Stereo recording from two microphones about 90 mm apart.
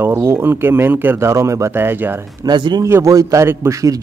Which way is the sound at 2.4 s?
55° right (ahead or behind).